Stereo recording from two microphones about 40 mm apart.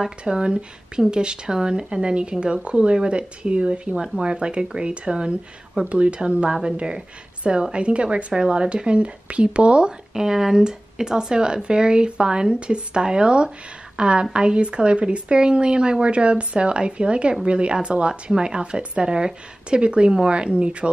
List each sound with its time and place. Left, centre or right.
0.3 s speech: right
10.1 s a woman's voice: centre